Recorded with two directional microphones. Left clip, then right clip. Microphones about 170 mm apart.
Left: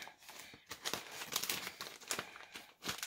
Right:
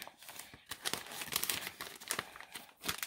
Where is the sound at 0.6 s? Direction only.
50° right (ahead or behind).